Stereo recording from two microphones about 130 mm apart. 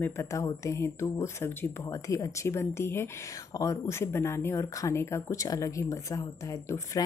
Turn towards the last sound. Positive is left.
turn(degrees=25)  # may be behind; listen again after turning